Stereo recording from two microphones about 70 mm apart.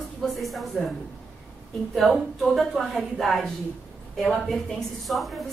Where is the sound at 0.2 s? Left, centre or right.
Centre.